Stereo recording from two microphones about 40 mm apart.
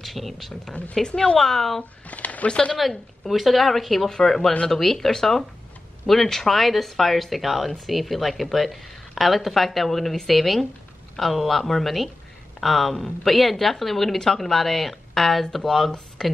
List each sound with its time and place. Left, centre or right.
0.0 s a woman's voice: centre
0.9 s speech: centre
2.0 s speech: left
2.5 s speech: left
2.8 s a woman's voice: centre